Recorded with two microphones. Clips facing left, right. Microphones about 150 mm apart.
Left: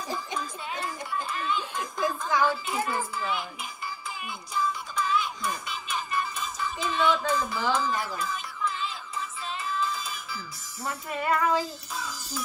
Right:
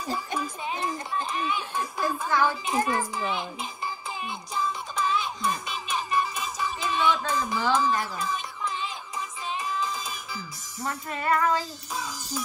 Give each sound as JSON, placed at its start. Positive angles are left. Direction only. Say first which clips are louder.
{"t": 0.1, "sound": "a sound", "louder": "right 4 dB", "side_deg": -15}
{"t": 7.7, "sound": "music", "louder": "right 3 dB", "side_deg": -15}
{"t": 10.8, "sound": "music", "louder": "even", "side_deg": 5}
{"t": 11.9, "sound": "music", "louder": "right 2 dB", "side_deg": -20}